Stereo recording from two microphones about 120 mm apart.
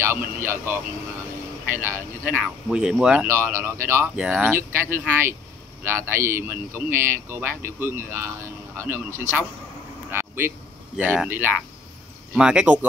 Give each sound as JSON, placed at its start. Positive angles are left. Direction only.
{"t": 0.0, "sound": "speech", "side_deg": -20}
{"t": 3.3, "sound": "speech", "side_deg": -20}
{"t": 10.1, "sound": "a sound", "side_deg": -20}
{"t": 11.2, "sound": "speech", "side_deg": -20}